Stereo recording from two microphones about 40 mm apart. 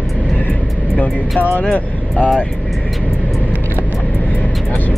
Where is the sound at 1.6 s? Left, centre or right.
Left.